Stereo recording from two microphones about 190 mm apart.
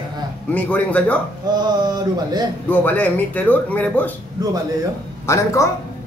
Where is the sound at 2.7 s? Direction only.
10° left (ahead or behind).